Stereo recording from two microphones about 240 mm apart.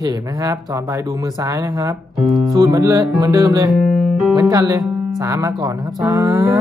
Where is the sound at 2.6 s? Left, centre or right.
Centre.